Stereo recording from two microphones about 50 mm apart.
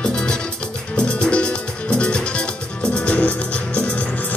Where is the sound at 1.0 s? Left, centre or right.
Left.